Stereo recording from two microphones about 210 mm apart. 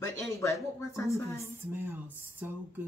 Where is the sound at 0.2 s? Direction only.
15° left (ahead or behind).